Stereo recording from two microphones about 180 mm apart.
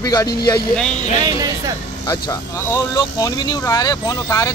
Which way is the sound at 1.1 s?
20° right (ahead or behind).